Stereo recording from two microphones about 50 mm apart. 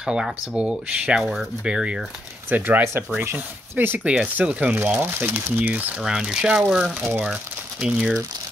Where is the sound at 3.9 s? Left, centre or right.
Right.